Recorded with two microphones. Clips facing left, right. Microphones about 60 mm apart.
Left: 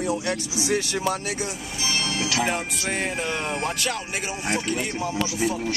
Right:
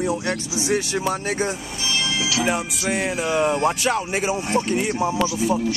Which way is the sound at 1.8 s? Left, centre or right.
Left.